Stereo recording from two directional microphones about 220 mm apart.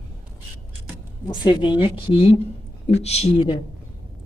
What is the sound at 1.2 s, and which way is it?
A woman's voice, 20° left (ahead or behind).